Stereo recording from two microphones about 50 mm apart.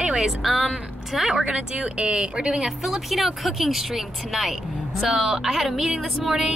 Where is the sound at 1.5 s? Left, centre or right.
Centre.